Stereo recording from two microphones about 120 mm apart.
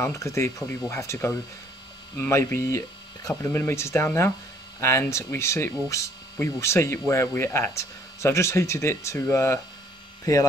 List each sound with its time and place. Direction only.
0.0 s speech: 25° left (ahead or behind)